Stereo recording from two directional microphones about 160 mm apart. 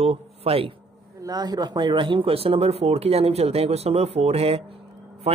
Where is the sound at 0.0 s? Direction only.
40° right (ahead or behind).